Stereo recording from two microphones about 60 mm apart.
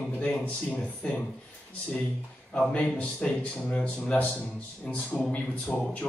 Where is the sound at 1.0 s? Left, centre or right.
Centre.